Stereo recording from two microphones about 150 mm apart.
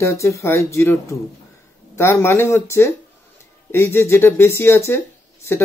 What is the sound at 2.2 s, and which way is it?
Speech, 15° left (ahead or behind).